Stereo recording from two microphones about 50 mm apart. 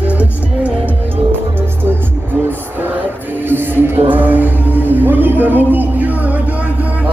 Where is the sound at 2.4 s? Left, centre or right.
Right.